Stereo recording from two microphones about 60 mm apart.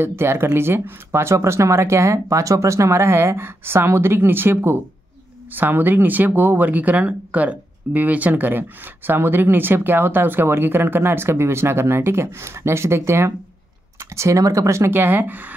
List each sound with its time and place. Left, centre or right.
0.0 s speech: right
14.1 s speech: right
14.9 s speech: right